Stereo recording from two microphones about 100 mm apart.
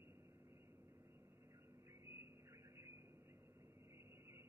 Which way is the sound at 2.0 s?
25° right (ahead or behind).